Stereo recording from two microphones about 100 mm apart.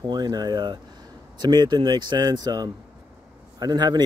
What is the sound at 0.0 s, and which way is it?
Speech, 45° right (ahead or behind).